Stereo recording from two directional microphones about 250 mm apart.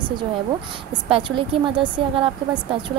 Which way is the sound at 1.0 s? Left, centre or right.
Right.